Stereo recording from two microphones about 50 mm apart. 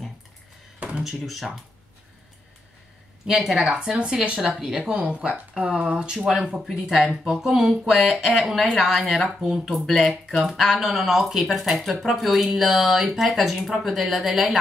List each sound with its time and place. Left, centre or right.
0.9 s speech: centre
3.3 s speech: centre
3.6 s speech: centre
4.4 s speech: centre
6.1 s speech: centre